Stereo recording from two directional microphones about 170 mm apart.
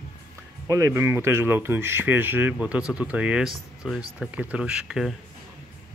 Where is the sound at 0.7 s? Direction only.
20° right (ahead or behind); by 5.1 s 5° right (ahead or behind).